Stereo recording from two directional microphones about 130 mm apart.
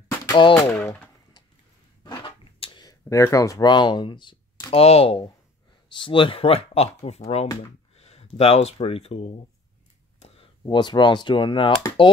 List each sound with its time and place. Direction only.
0.3 s speech: 40° left (ahead or behind)
0.7 s speech: 5° left (ahead or behind)
2.0 s a sound: 40° left (ahead or behind)
4.8 s speech: 45° left (ahead or behind)
10.2 s a sound: 50° left (ahead or behind)
10.6 s speech: 35° left (ahead or behind)